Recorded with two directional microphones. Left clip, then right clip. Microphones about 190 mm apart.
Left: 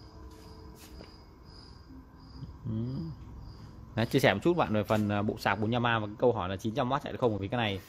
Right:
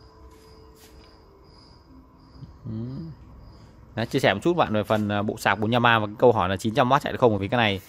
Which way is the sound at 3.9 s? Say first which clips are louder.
Right 4 dB; 5° right (ahead or behind).